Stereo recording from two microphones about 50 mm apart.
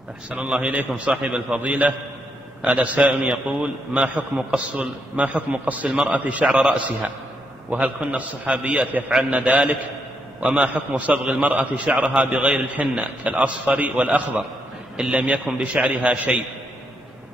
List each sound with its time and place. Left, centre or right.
0.3 s a man's voice: right
1.1 s a man's voice: centre
5.9 s a man's voice: centre
6.1 s a man's voice: right
6.4 s a man's voice: centre
7.7 s a man's voice: right